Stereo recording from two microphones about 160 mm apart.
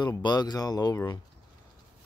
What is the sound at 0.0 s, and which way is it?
Speech, 25° left (ahead or behind).